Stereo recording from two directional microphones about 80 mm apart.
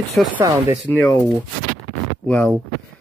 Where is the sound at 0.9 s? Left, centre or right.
Left.